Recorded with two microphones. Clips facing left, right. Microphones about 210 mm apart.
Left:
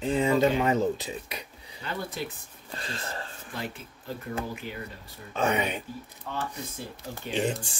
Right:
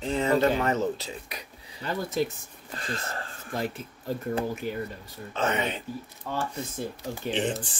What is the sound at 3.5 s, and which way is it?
Speech, 45° right (ahead or behind).